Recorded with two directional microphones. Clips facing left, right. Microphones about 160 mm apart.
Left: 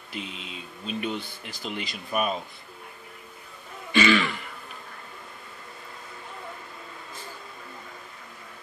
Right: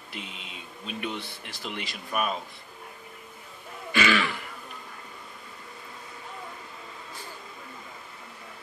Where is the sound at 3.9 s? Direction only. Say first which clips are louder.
Left 4 dB; 10° right (ahead or behind).